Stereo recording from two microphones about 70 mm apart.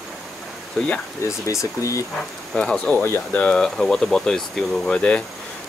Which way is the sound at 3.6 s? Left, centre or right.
Centre.